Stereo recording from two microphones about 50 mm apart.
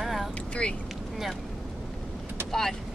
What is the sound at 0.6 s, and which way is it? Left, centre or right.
Vehicle, left.